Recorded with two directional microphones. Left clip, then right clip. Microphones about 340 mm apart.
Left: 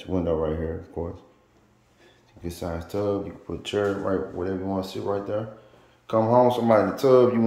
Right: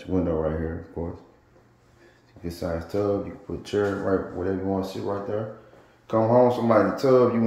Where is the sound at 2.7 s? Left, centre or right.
Centre.